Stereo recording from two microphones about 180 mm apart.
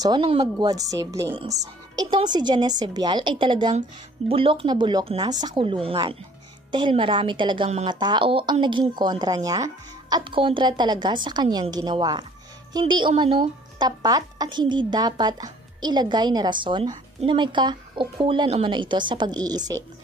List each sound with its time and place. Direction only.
0.0 s speech: 25° right (ahead or behind)